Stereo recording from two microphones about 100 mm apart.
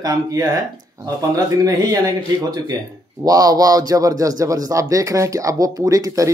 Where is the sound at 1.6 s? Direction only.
40° right (ahead or behind).